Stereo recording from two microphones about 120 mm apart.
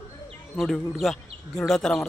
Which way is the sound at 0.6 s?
Centre (ahead or behind).